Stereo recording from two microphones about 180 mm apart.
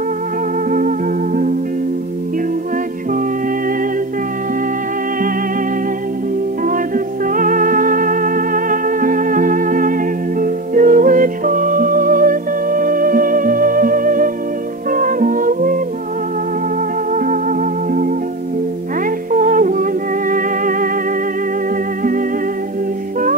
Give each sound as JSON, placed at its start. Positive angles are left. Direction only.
{"t": 0.7, "sound": "music", "side_deg": -50}
{"t": 7.3, "sound": "music", "side_deg": -50}
{"t": 17.1, "sound": "music", "side_deg": -50}
{"t": 19.3, "sound": "music", "side_deg": -50}